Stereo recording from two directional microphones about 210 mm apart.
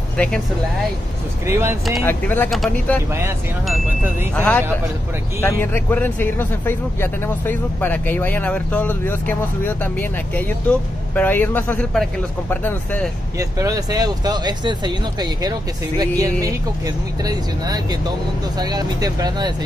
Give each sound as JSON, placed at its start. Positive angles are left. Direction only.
{"t": 1.4, "sound": "speech", "side_deg": -10}
{"t": 2.0, "sound": "speech", "side_deg": 10}
{"t": 3.1, "sound": "speech", "side_deg": -10}
{"t": 4.4, "sound": "speech", "side_deg": 5}
{"t": 13.4, "sound": "speech", "side_deg": -15}